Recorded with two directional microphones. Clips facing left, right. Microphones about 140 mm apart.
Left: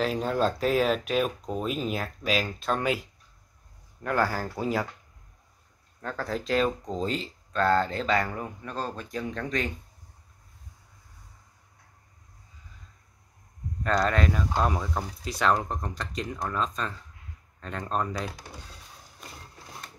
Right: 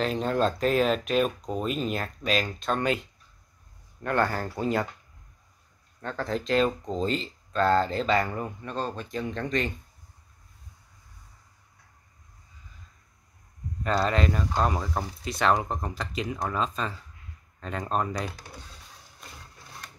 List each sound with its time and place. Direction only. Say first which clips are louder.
0.0 s speech: even; 5° left (ahead or behind)
5.9 s speech: right 1 dB; centre (ahead or behind)
13.8 s speech: even; 5° right (ahead or behind)